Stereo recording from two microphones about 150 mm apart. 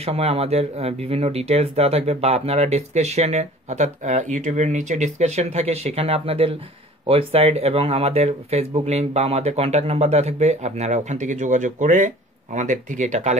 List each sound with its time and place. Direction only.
0.0 s speech: 40° right (ahead or behind)